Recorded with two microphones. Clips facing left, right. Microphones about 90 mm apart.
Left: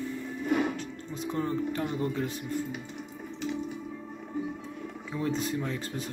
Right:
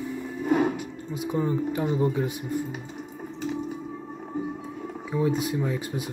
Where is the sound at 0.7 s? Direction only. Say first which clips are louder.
Right 4 dB; 10° right (ahead or behind).